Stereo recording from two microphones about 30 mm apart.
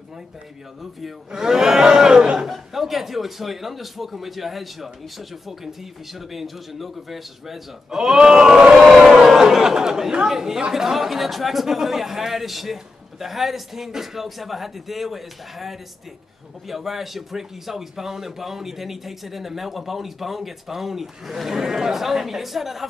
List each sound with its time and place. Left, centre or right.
1.3 s speech: centre
2.7 s a man's voice: centre; by 8.5 s right
8.7 s crowd: centre
10.2 s a man's voice: centre